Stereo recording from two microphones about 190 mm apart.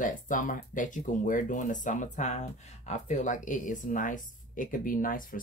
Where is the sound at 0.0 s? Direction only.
45° left (ahead or behind).